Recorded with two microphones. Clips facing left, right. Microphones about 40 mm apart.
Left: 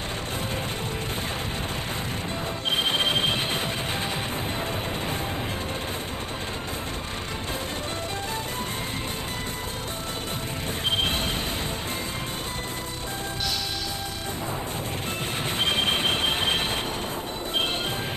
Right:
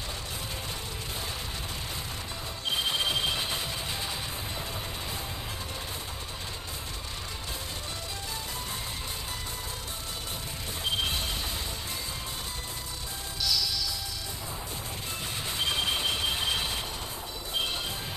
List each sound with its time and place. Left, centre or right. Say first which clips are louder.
2.7 s music: left 4 dB; left
10.9 s music: left 4 dB; left
13.4 s train: right 2 dB; left
15.5 s train: left 5 dB; left